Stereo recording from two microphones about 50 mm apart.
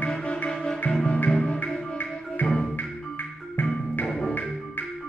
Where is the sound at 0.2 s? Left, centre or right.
Left.